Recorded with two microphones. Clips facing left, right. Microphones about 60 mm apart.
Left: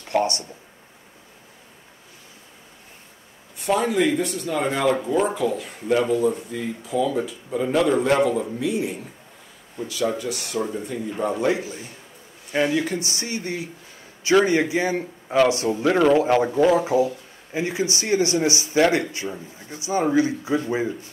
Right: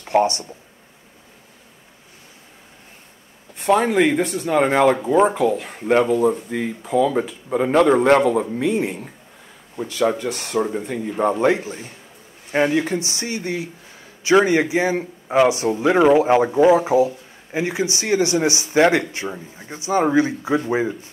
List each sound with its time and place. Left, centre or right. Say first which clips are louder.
0.0 s speech: right 5 dB; right
3.5 s speech: right 4 dB; right
6.5 s speech: right 5 dB; right
7.1 s a man's voice: right 4 dB; right